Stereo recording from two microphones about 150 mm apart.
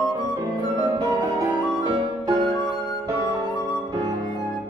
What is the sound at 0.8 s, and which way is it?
Music, 30° right (ahead or behind).